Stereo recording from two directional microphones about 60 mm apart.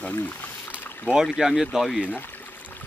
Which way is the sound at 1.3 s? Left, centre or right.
Centre.